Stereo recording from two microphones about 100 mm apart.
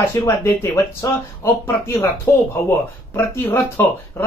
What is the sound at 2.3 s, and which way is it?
Speech, 25° left (ahead or behind).